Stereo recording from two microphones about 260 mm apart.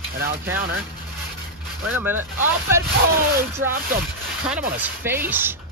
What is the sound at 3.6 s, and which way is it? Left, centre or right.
Speech, right.